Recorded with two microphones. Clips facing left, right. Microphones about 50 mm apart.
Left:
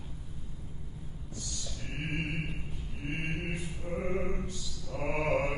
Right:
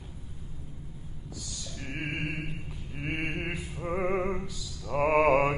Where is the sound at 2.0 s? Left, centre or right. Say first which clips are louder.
Right 1 dB; right.